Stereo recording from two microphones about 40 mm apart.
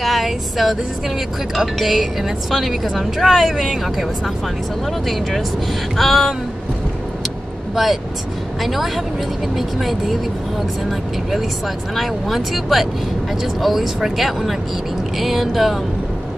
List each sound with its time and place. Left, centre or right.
0.0 s speech: centre
7.7 s speech: centre
11.9 s speech: centre